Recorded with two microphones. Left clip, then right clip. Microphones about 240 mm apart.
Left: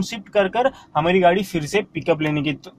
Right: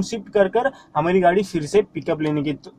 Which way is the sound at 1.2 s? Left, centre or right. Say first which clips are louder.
Left 1 dB; left.